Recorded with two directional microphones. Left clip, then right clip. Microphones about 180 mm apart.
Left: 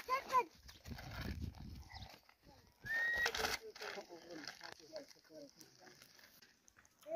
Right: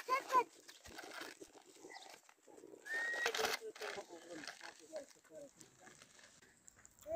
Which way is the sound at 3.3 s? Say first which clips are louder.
Right 1 dB; 40° right (ahead or behind).